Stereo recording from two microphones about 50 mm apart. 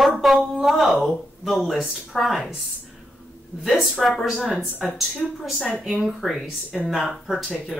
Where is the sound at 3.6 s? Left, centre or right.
Centre.